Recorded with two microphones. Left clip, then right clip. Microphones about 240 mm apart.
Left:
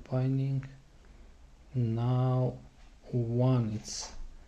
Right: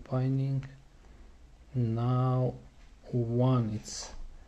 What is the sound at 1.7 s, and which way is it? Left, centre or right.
Speech, centre.